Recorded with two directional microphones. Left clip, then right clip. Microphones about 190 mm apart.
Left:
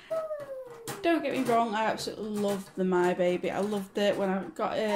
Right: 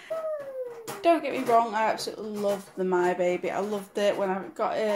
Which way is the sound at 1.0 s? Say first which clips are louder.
Right 4 dB; centre (ahead or behind).